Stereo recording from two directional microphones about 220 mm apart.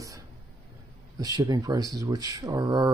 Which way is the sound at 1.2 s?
15° right (ahead or behind).